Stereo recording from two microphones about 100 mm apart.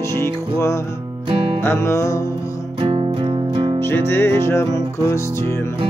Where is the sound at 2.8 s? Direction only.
70° right (ahead or behind).